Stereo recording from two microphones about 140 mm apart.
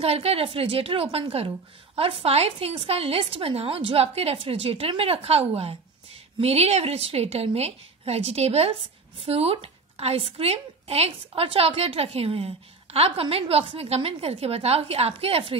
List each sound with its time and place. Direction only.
0.0 s speech: 45° right (ahead or behind)